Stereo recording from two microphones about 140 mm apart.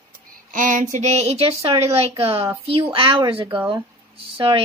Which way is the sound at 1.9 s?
40° right (ahead or behind).